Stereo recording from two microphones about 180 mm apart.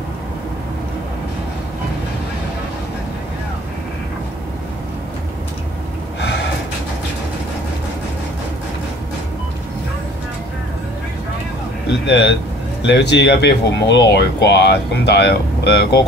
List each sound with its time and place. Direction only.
6.2 s gasp: 70° left (ahead or behind)
12.1 s speech: 70° left (ahead or behind)